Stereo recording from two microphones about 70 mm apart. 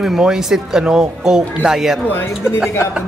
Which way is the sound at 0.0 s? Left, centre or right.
Centre.